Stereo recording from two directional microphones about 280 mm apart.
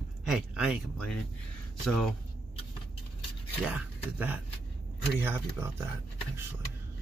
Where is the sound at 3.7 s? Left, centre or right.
Centre.